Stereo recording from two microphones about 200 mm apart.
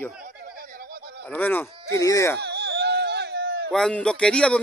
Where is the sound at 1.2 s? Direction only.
10° left (ahead or behind).